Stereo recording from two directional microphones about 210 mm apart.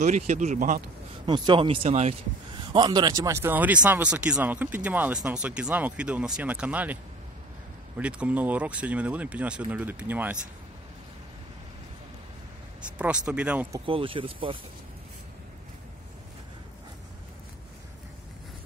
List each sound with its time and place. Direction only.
0.0 s speech: 35° right (ahead or behind)
1.2 s a man's voice: 20° right (ahead or behind)
8.0 s a man's voice: 5° right (ahead or behind)
12.9 s a man's voice: 5° right (ahead or behind)
13.8 s speech: 25° right (ahead or behind)